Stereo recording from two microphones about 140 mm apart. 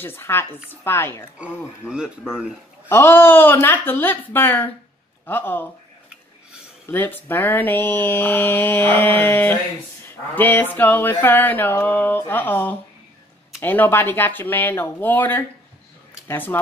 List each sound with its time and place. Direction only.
0.0 s speech: 15° left (ahead or behind)
1.4 s speech: 5° right (ahead or behind)
2.9 s speech: 15° left (ahead or behind)
6.9 s speech: 15° left (ahead or behind)